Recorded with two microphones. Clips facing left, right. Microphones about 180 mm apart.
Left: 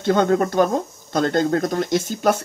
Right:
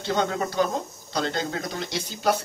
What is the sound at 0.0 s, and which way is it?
Speech, 55° left (ahead or behind).